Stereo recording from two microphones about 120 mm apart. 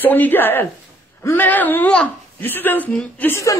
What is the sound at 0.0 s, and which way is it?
Speech, 15° left (ahead or behind).